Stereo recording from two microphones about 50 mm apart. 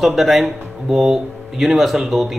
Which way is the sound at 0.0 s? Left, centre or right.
Centre.